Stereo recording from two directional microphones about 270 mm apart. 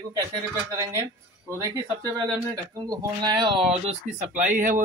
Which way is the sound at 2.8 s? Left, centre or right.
Centre.